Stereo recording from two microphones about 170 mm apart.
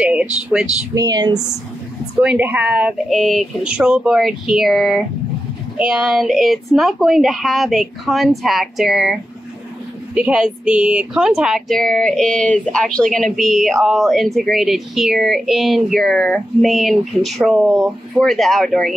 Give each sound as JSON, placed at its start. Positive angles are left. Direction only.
{"t": 0.0, "sound": "speech", "side_deg": -5}
{"t": 0.9, "sound": "speech", "side_deg": -25}
{"t": 2.1, "sound": "a woman's voice", "side_deg": -10}